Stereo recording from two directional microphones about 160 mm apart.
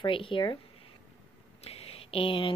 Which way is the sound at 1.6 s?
35° left (ahead or behind).